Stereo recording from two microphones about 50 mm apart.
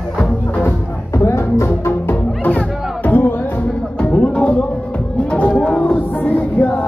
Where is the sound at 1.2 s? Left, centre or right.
Left.